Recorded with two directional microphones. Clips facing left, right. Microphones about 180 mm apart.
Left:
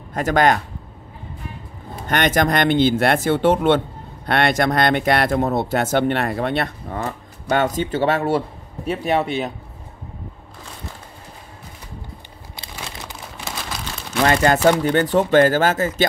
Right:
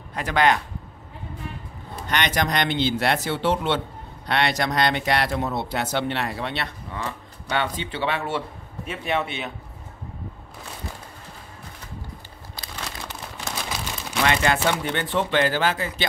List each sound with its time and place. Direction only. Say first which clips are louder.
0.1 s speech: left 4 dB; 45° left (ahead or behind)
2.0 s speech: left 6 dB; 50° left (ahead or behind)
12.7 s crumpling: left 1 dB; 5° left (ahead or behind)
14.2 s speech: left 7 dB; 40° left (ahead or behind)